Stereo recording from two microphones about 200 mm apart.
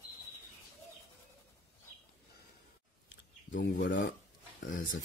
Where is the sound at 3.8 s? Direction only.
65° left (ahead or behind).